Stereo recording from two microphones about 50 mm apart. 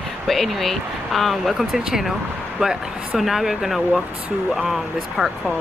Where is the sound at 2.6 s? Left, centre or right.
Centre.